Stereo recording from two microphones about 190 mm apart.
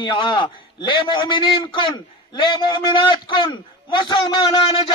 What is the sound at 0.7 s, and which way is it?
A man's voice, 25° left (ahead or behind).